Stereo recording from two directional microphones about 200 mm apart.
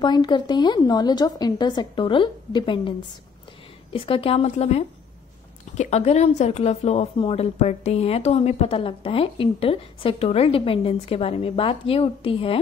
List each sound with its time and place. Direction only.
0.0 s a woman's voice: 20° left (ahead or behind)
3.9 s a woman's voice: 25° left (ahead or behind)